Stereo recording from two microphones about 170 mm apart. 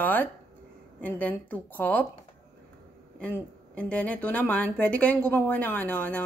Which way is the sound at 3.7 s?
5° left (ahead or behind).